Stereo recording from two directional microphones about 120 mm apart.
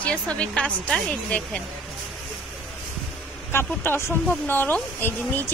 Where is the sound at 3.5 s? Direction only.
20° left (ahead or behind).